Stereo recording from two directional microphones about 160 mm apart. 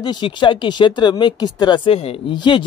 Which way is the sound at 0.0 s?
30° left (ahead or behind).